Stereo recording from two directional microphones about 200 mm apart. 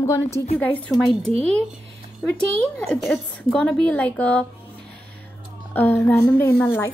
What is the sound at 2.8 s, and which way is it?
Speech, centre (ahead or behind).